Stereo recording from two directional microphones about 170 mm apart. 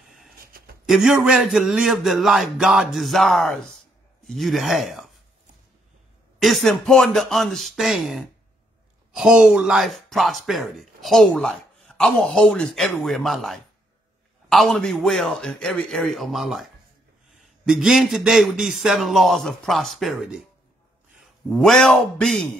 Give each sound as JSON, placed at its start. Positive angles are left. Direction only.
{"t": 0.8, "sound": "speech", "side_deg": -5}
{"t": 6.4, "sound": "a man's voice", "side_deg": 0}